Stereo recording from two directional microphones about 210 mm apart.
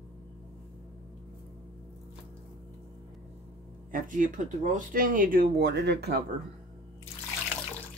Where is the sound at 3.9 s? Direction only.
40° right (ahead or behind).